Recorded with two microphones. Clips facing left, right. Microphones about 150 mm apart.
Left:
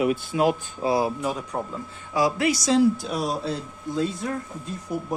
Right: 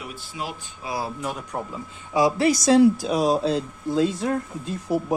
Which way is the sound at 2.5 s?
55° right (ahead or behind).